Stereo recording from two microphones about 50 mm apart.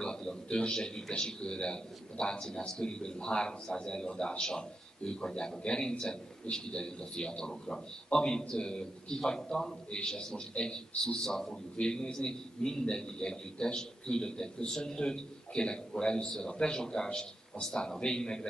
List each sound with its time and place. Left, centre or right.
0.0 s a man's voice: centre